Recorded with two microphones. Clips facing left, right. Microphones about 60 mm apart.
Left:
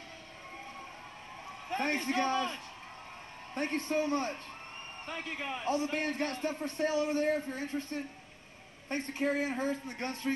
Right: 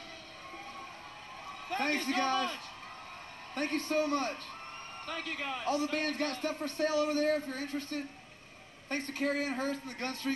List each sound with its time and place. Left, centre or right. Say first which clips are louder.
1.7 s a man's voice: even; left